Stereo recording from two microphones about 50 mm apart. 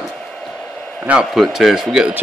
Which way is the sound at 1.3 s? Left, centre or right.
Centre.